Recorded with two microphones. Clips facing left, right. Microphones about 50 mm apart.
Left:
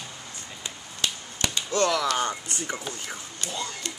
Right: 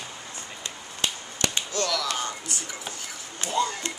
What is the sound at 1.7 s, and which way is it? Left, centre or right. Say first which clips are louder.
Speech: left 9 dB; left.